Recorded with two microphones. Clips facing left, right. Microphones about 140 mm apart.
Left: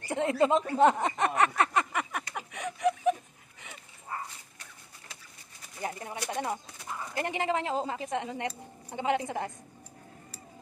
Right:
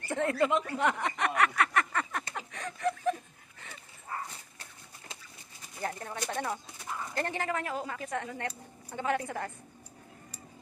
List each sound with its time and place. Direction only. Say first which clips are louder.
0.1 s a woman's voice: left 2 dB; 20° left (ahead or behind)
0.7 s a sound: left 6 dB; 25° left (ahead or behind)
4.6 s bird: right 1 dB; 25° right (ahead or behind)
5.8 s a sound: even; 15° left (ahead or behind)
6.3 s chicken: left 2 dB; 15° left (ahead or behind)
7.2 s a woman's voice: left 3 dB; 15° left (ahead or behind)